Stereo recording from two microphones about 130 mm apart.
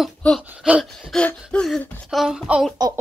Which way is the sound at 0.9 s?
5° left (ahead or behind).